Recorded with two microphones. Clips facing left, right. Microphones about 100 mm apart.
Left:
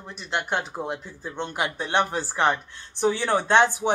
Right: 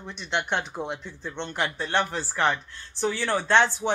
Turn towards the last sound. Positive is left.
turn(degrees=15)  # may be behind; listen again after turning